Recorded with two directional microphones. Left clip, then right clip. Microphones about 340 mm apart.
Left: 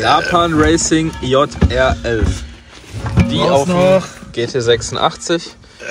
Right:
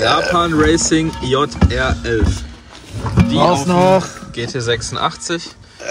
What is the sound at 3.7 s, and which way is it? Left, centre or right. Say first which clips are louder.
Speech: even; right.